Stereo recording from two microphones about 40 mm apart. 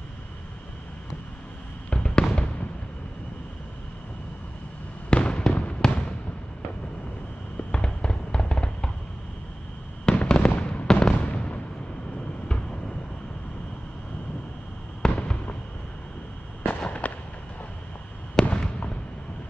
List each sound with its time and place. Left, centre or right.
1.9 s fireworks: left
5.1 s fireworks: left
7.7 s fireworks: left
10.0 s fireworks: centre
11.2 s artillery fire: left
15.0 s fireworks: centre
16.6 s fireworks: left
18.4 s fireworks: centre